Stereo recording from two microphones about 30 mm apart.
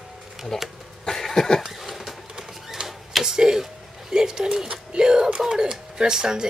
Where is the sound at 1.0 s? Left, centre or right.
Centre.